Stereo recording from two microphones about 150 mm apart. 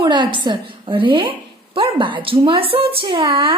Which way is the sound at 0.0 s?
30° right (ahead or behind).